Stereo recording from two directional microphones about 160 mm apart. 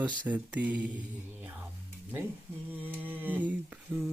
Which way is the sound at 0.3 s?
10° right (ahead or behind).